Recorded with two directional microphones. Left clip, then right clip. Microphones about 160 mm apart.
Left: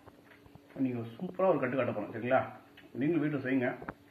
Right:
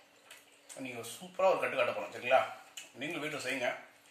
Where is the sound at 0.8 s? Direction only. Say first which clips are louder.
Left 6 dB; 20° right (ahead or behind).